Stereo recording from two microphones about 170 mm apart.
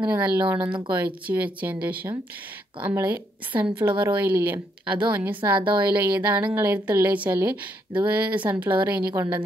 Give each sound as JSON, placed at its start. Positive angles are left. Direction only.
{"t": 0.0, "sound": "a woman's voice", "side_deg": -10}
{"t": 5.6, "sound": "a woman's voice", "side_deg": -30}
{"t": 6.1, "sound": "a woman's voice", "side_deg": -10}